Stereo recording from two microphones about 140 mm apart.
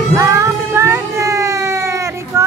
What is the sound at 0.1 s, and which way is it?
Baby cry, 20° right (ahead or behind).